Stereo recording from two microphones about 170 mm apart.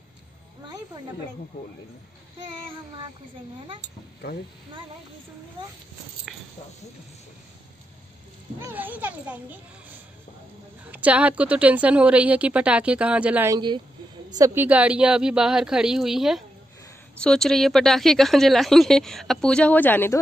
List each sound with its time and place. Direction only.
8.5 s a woman's voice: 10° right (ahead or behind)
10.9 s a woman's voice: 10° right (ahead or behind)
13.5 s speech: 25° right (ahead or behind)
14.3 s a woman's voice: 15° right (ahead or behind); by 20.2 s 10° left (ahead or behind)